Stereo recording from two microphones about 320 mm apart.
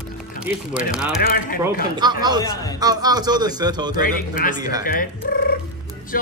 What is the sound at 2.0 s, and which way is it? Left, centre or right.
Speech, centre.